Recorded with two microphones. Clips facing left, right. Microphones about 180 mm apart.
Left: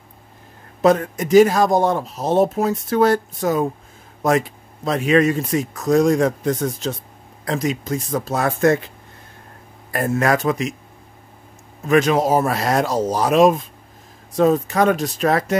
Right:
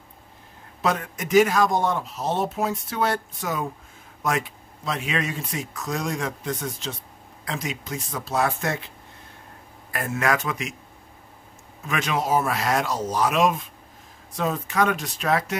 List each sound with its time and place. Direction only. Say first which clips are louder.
0.8 s speech: left 9 dB; 40° left (ahead or behind)
9.9 s speech: left 6 dB; 40° left (ahead or behind)
11.9 s speech: left 8 dB; 40° left (ahead or behind)